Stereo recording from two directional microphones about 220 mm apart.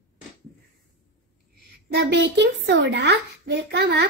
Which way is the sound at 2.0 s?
50° right (ahead or behind).